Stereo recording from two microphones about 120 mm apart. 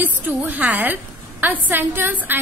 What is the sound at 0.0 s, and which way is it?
A woman's voice, 15° right (ahead or behind).